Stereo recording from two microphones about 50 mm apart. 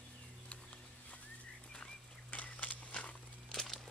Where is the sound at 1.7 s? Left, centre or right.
Left.